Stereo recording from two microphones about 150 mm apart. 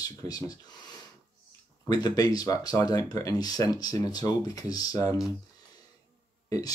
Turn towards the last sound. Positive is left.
turn(degrees=20)  # may be behind; listen again after turning